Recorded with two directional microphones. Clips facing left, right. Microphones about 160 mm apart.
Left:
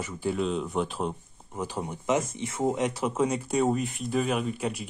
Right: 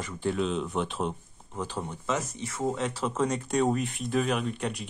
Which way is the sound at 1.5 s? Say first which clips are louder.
Left 1 dB; 15° left (ahead or behind).